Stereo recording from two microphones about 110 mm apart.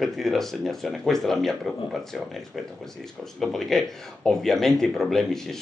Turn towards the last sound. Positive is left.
turn(degrees=0)  # may be behind; listen again after turning